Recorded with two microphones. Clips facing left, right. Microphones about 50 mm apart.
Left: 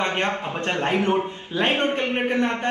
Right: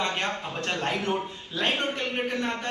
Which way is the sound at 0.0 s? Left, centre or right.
Left.